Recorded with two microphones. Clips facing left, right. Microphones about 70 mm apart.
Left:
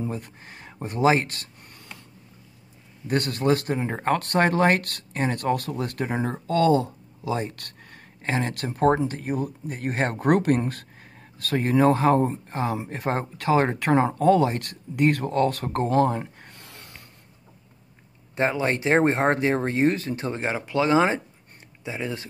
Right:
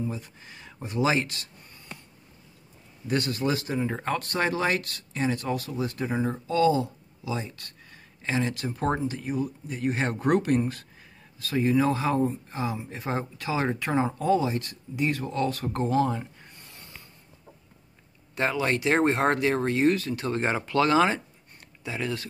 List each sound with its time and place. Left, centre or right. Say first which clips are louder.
0.1 s speech: left 4 dB; left
3.1 s speech: left 4 dB; left
16.4 s a sound: left 3 dB; left
18.3 s speech: left 2 dB; left
20.3 s speech: right 1 dB; centre; by 22.3 s left